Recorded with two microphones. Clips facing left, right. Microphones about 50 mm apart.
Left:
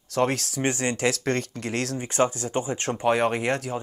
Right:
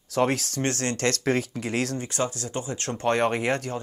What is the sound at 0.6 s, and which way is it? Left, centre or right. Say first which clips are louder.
Speech: left 2 dB; centre.